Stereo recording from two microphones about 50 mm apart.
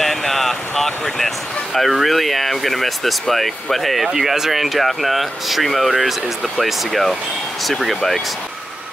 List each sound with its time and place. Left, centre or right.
0.0 s speech: centre